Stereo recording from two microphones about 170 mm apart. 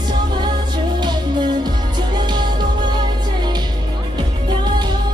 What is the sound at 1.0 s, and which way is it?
Music, 25° right (ahead or behind).